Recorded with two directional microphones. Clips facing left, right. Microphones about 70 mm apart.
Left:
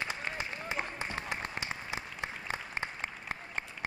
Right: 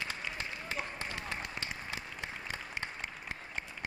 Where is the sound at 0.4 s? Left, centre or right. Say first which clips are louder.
Left 3 dB; centre.